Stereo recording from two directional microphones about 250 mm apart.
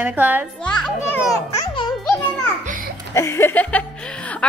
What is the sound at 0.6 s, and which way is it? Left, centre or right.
Children playing, centre.